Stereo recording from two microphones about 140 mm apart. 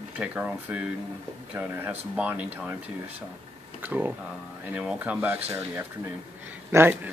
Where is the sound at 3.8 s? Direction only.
10° right (ahead or behind).